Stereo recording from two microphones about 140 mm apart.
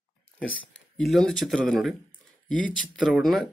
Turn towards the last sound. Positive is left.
turn(degrees=0)  # may be behind; listen again after turning